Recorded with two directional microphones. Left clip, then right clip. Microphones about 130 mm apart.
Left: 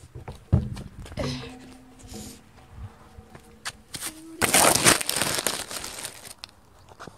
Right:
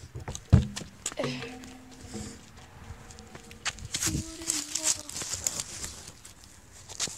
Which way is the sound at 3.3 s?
90° left.